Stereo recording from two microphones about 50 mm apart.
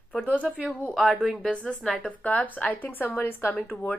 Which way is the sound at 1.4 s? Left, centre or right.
Centre.